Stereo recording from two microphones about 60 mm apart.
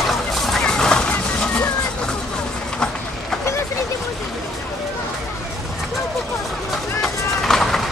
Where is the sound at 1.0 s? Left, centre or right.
Centre.